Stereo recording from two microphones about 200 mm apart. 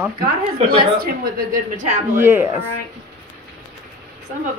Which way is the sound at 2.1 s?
10° right (ahead or behind).